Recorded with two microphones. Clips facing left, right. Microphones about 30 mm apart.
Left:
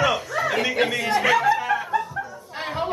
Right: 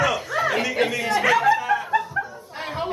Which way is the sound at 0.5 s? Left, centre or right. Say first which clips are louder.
Left 1 dB; centre.